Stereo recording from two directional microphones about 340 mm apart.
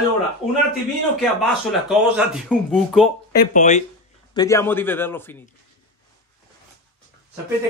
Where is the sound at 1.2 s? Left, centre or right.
Centre.